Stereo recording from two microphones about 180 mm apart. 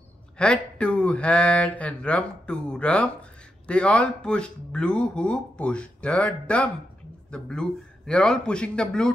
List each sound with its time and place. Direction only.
0.4 s speech: 5° left (ahead or behind)